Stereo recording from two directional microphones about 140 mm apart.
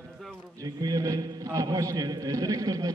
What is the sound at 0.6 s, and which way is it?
A man's voice, 25° right (ahead or behind).